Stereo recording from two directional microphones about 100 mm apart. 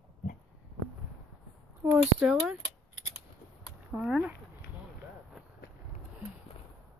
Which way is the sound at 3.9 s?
10° right (ahead or behind).